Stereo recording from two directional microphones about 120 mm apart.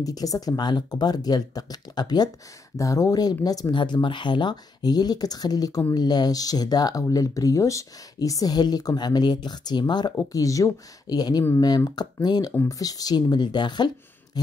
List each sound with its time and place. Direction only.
0.0 s speech: 30° left (ahead or behind)